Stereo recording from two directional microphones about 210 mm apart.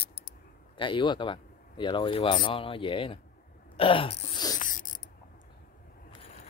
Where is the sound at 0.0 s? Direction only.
45° left (ahead or behind).